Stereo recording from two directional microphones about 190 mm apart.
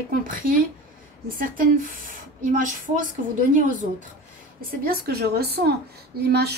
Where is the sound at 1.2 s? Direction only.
45° right (ahead or behind).